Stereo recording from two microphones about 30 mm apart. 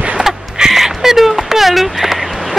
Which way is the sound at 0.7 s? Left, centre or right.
Centre.